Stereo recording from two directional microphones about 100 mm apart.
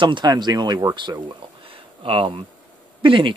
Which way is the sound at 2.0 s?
65° right (ahead or behind).